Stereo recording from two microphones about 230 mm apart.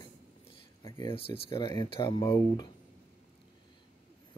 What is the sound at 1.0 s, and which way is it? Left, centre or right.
Speech, left.